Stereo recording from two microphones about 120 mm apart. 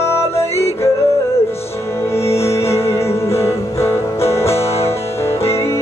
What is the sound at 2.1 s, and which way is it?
Music, 20° left (ahead or behind).